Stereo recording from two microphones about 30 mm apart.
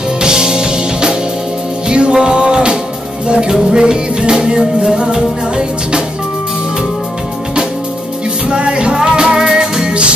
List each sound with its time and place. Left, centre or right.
0.2 s music: right
1.9 s music: right
8.5 s music: right
9.5 s music: centre